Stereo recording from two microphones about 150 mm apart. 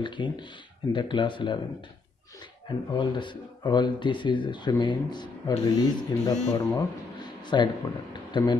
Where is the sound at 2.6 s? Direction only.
30° left (ahead or behind).